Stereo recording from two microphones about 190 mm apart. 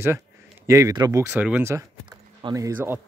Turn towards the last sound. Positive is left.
turn(degrees=-10)  # may be behind; listen again after turning